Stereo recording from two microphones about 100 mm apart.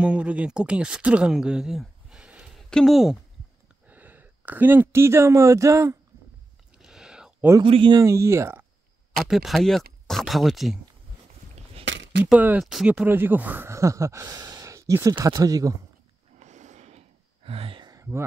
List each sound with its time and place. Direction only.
0.0 s speech: 10° right (ahead or behind)
2.7 s speech: centre (ahead or behind)
3.8 s speech: 15° right (ahead or behind)
6.8 s a sound: 5° right (ahead or behind)
7.6 s a man's voice: 65° right (ahead or behind)
8.0 s speech: 30° right (ahead or behind)
9.1 s speech: centre (ahead or behind)
12.4 s speech: 15° right (ahead or behind); by 15.7 s 35° right (ahead or behind)
16.8 s a sound: 85° right
17.9 s a sound: 25° right (ahead or behind)